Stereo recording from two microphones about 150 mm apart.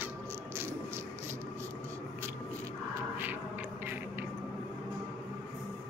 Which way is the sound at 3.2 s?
15° right (ahead or behind).